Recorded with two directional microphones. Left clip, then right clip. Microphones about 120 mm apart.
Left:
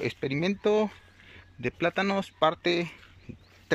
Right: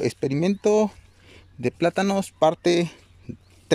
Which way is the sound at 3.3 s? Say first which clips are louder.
Right 9 dB; 35° right (ahead or behind).